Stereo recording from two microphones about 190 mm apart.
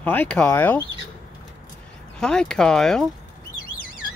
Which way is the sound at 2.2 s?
5° left (ahead or behind).